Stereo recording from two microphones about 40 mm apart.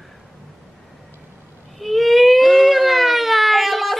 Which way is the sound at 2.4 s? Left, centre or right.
Centre.